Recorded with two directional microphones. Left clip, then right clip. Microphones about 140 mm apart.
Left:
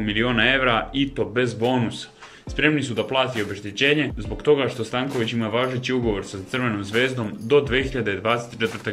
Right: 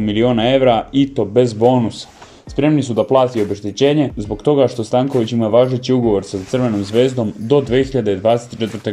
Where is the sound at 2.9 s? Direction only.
50° right (ahead or behind).